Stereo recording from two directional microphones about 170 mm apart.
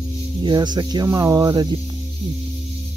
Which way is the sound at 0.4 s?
25° right (ahead or behind).